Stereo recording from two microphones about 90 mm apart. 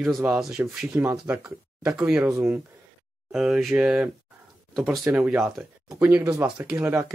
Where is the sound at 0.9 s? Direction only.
25° right (ahead or behind).